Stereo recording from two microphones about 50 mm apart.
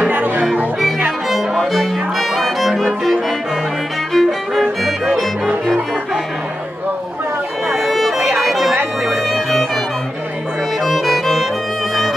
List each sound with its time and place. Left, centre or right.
0.1 s music: right
1.3 s violin: centre
7.7 s music: centre
10.9 s music: centre